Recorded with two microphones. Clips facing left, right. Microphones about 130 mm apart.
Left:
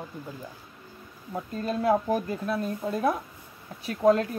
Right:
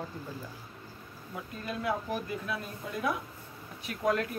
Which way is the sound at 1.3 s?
35° left (ahead or behind).